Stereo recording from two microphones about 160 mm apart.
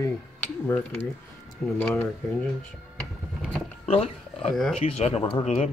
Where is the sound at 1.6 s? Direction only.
5° left (ahead or behind).